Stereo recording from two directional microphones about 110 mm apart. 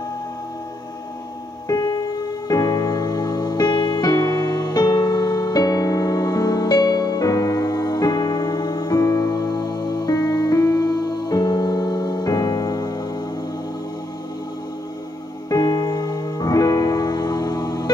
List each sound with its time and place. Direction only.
1.7 s music: 35° left (ahead or behind)
15.5 s music: 35° left (ahead or behind)